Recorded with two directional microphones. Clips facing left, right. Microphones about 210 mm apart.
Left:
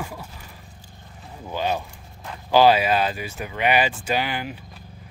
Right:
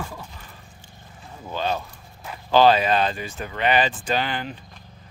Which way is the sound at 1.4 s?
10° left (ahead or behind).